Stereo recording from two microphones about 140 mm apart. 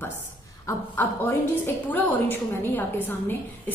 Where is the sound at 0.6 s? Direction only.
20° left (ahead or behind).